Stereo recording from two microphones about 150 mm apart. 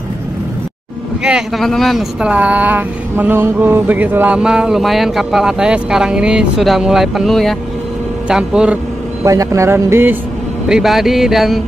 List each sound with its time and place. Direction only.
1.2 s speech: centre (ahead or behind)
9.2 s speech: 20° right (ahead or behind)
10.7 s speech: centre (ahead or behind)